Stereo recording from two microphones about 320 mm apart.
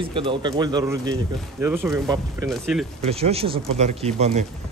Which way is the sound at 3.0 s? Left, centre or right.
Centre.